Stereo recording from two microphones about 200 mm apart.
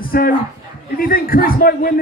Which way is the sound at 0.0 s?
45° left (ahead or behind).